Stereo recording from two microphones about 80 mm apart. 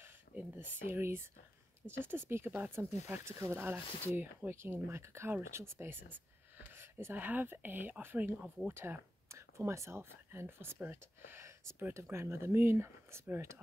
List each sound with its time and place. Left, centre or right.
0.4 s speech: right